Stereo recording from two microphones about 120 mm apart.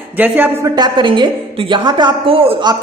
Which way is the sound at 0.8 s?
40° right (ahead or behind).